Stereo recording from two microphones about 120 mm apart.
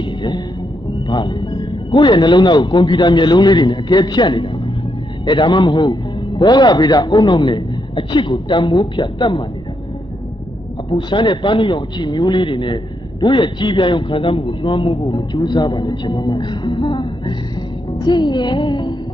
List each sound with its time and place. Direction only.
0.0 s a sound: 40° left (ahead or behind)
1.0 s speech: 40° left (ahead or behind)
10.9 s speech: 40° left (ahead or behind)